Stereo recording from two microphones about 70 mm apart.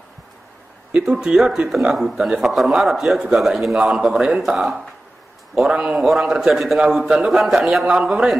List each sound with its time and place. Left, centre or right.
0.9 s speech: centre